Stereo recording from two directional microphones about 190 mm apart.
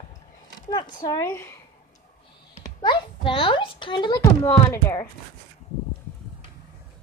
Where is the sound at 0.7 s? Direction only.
20° left (ahead or behind).